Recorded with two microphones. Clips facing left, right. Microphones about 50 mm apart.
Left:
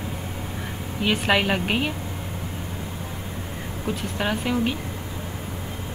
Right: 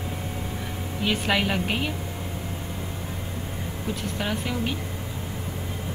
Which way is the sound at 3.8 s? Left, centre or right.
Centre.